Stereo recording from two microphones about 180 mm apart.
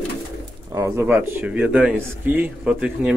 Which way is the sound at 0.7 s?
15° right (ahead or behind).